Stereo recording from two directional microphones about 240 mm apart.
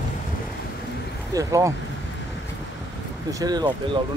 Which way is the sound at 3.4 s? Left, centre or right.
Centre.